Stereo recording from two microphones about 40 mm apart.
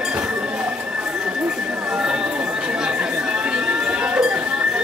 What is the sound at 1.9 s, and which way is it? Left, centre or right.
Chatter, right.